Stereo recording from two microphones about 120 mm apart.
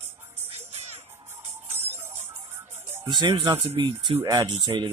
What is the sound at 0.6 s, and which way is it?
Music, 60° right (ahead or behind).